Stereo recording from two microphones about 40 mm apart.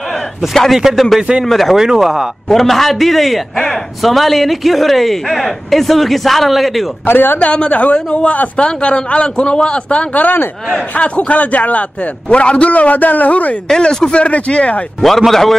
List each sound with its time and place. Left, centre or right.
0.8 s speech: centre
1.4 s a woman's voice: centre
1.8 s speech: centre
2.5 s a woman's voice: centre
7.1 s a man's voice: left
7.3 s a man's voice: left
12.3 s a man's voice: left
13.7 s a man's voice: centre
14.2 s a man's voice: left
15.0 s a man's voice: centre